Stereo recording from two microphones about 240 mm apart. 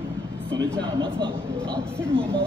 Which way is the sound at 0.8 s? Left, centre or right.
Centre.